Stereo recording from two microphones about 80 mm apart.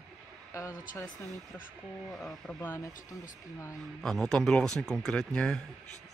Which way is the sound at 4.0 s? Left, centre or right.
Centre.